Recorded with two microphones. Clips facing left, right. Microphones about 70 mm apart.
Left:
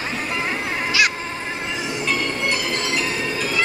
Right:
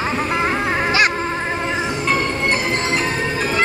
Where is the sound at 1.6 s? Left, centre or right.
Right.